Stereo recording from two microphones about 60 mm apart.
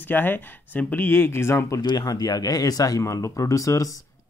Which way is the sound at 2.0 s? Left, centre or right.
Left.